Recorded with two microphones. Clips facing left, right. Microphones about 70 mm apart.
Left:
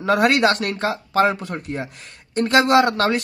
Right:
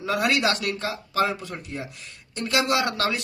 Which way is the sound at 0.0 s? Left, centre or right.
Left.